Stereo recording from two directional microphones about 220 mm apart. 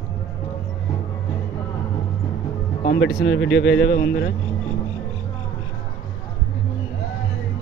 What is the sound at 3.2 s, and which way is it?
Speech, 55° left (ahead or behind).